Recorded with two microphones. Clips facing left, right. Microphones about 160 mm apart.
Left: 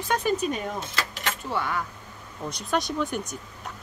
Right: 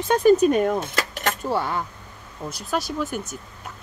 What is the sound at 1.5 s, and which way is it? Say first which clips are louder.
Speech: right 2 dB; 30° right (ahead or behind).